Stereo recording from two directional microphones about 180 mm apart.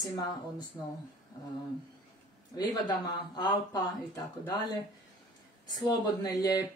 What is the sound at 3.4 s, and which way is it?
Speech, 20° left (ahead or behind).